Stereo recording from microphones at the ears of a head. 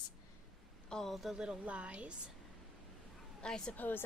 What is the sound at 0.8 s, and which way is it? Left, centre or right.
A woman's voice, centre.